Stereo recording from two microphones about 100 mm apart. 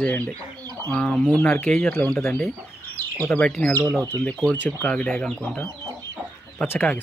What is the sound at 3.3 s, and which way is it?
Speech, 10° left (ahead or behind).